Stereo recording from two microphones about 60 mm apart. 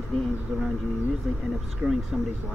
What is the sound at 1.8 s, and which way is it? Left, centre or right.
Speech, right.